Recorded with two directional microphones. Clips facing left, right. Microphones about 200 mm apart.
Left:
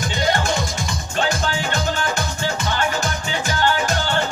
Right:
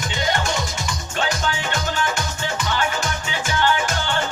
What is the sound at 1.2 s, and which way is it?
Music, 35° left (ahead or behind).